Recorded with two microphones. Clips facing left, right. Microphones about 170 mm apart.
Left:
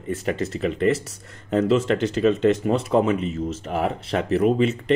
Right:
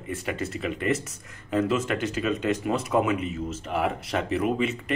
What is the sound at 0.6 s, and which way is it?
Speech, 35° left (ahead or behind).